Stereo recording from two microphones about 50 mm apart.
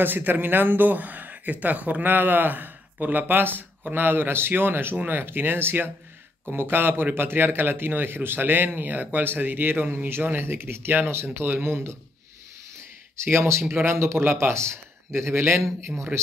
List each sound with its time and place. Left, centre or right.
0.0 s speech: right
13.2 s a man's voice: right
16.1 s speech: right